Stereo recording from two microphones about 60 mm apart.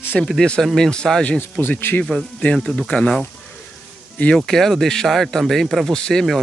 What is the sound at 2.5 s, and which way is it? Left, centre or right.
Speech, centre.